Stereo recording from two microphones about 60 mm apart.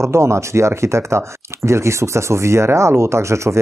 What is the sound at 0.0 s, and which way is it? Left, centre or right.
Speech, right.